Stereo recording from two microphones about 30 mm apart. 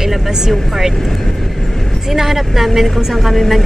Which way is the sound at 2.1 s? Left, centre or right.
Centre.